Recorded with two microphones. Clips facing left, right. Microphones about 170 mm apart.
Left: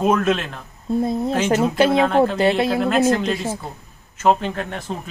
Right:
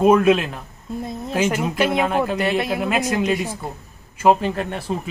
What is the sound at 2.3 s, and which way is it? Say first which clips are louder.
Speech: left 3 dB; 30° left (ahead or behind).